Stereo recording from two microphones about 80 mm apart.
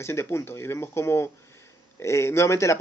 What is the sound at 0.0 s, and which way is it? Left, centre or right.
Speech, left.